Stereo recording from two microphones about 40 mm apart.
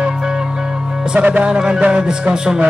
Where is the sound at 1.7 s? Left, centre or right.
Right.